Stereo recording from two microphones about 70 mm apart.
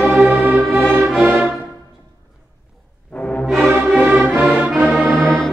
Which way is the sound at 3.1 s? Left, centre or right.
Centre.